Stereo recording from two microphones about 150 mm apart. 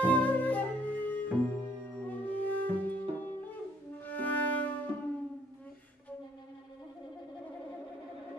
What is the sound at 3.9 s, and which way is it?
Music, 10° left (ahead or behind).